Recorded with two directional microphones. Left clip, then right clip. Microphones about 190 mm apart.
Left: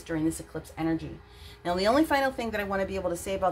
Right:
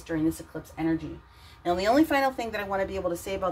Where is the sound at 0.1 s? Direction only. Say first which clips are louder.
Right 2 dB; centre (ahead or behind).